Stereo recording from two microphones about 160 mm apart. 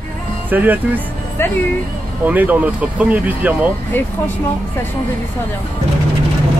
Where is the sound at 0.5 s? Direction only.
10° right (ahead or behind).